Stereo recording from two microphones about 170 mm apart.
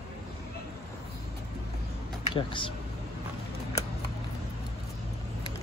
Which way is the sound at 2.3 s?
30° left (ahead or behind).